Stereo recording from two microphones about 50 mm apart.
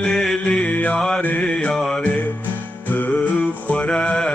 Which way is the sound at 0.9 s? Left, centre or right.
Centre.